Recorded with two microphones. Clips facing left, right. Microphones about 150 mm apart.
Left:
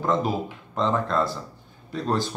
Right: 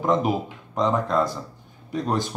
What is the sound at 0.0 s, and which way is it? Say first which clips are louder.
Speech: right 2 dB; 20° right (ahead or behind).